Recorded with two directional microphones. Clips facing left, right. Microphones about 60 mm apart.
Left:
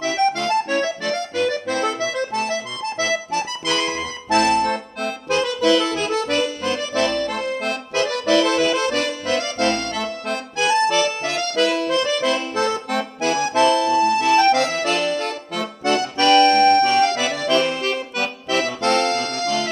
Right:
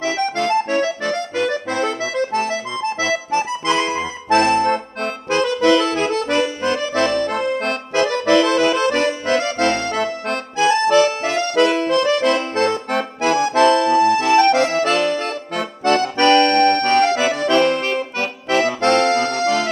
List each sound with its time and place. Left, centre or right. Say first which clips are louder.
0.4 s accordion: right 2 dB; right
1.1 s accordion: right 1 dB; centre
3.3 s accordion: right 4 dB; right
7.9 s accordion: right 3 dB; right
17.6 s accordion: right 6 dB; right
17.8 s accordion: right 2 dB; right